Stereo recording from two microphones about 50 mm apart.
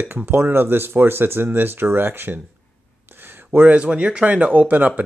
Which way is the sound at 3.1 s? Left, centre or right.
Right.